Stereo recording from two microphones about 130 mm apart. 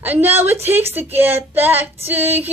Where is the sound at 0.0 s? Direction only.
15° right (ahead or behind).